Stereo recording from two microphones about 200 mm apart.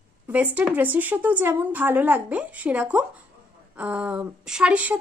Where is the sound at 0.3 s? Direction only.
5° right (ahead or behind).